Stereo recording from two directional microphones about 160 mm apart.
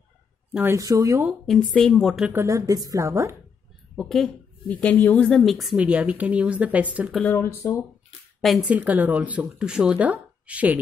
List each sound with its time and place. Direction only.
0.6 s a woman's voice: 20° right (ahead or behind)
1.5 s a woman's voice: 5° left (ahead or behind)
2.3 s a woman's voice: 20° right (ahead or behind)
3.9 s a woman's voice: centre (ahead or behind)
7.2 s speech: 15° left (ahead or behind)
8.4 s speech: centre (ahead or behind)